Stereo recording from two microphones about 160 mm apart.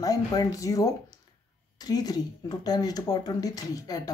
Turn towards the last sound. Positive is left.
turn(degrees=25)  # may be behind; listen again after turning